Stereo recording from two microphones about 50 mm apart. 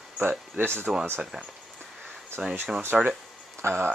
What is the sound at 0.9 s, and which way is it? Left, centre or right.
Speech, centre.